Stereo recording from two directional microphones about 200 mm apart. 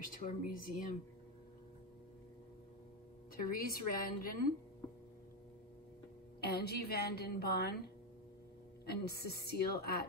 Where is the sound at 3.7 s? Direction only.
45° left (ahead or behind).